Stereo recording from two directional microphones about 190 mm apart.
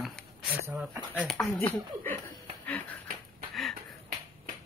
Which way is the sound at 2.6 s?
10° left (ahead or behind).